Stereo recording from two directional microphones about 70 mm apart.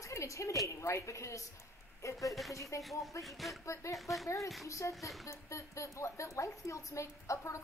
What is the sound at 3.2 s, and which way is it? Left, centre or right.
Speech, centre.